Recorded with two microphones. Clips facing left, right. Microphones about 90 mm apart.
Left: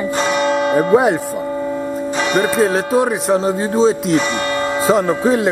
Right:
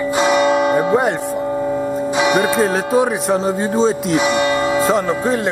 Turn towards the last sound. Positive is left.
turn(degrees=0)  # may be behind; listen again after turning